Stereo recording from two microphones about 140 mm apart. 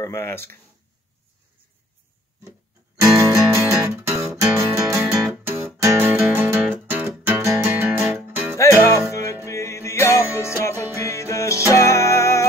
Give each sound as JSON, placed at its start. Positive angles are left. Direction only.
{"t": 0.0, "sound": "speech", "side_deg": 15}
{"t": 3.0, "sound": "music", "side_deg": -25}
{"t": 8.5, "sound": "music", "side_deg": 20}